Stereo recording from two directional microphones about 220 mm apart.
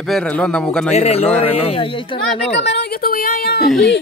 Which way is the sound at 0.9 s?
30° left (ahead or behind).